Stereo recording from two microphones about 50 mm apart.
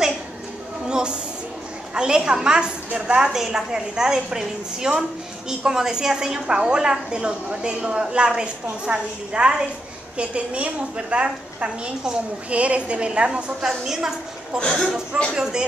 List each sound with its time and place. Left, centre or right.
0.8 s a sound: centre
2.0 s a woman's voice: centre
3.3 s a woman's voice: centre
13.6 s a woman's voice: centre
14.6 s speech: centre